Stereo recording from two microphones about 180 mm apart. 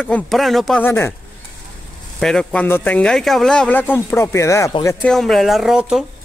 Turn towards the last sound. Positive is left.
turn(degrees=-5)  # may be behind; listen again after turning